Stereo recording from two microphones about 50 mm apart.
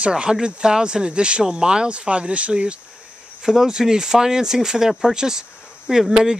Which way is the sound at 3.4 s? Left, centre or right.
Centre.